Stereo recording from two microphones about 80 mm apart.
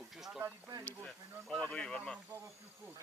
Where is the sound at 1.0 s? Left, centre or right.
Centre.